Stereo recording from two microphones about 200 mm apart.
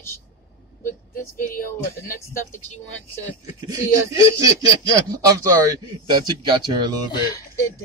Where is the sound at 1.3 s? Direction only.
45° left (ahead or behind).